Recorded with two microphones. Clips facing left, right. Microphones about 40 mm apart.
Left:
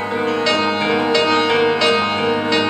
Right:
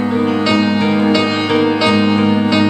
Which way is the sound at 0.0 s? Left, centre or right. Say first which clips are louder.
Right 3 dB; centre.